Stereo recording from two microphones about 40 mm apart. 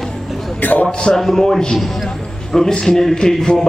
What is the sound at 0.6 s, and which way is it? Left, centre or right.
Speech, left.